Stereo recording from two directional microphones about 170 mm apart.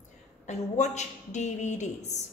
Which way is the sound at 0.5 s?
45° left (ahead or behind).